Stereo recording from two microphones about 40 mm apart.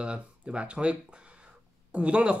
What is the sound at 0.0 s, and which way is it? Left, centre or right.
Speech, right.